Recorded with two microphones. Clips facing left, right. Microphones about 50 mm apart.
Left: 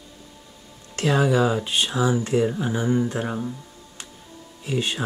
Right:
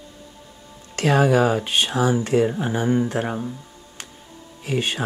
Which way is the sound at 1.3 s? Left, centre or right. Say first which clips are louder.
Right 2 dB; right.